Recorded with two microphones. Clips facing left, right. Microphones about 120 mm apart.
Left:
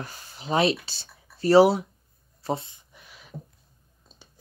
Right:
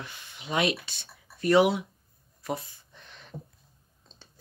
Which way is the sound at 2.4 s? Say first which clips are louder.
Left 4 dB; 25° left (ahead or behind).